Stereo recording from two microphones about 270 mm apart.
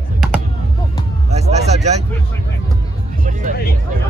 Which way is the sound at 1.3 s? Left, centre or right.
Right.